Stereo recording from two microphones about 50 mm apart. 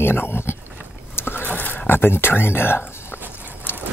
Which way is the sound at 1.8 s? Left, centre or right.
Left.